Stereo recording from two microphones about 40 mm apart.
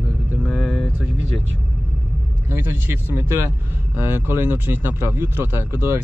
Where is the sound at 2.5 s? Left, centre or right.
Right.